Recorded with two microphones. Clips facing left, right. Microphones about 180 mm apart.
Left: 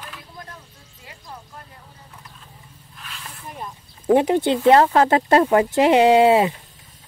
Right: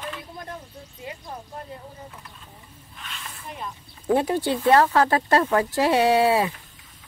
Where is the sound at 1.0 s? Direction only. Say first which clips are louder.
Right 9 dB; 20° right (ahead or behind).